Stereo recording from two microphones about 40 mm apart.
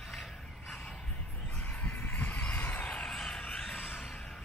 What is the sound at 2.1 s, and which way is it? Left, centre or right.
Heart sounds, left.